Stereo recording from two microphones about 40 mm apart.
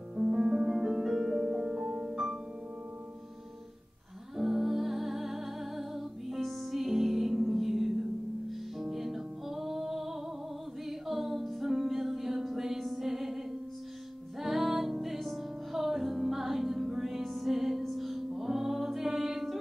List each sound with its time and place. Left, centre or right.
0.1 s music: centre
4.4 s music: centre
14.4 s music: centre